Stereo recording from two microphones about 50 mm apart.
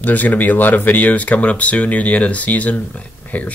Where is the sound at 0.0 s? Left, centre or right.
Left.